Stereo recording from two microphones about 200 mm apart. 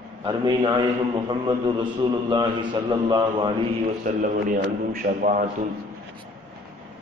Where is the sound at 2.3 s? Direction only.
25° right (ahead or behind).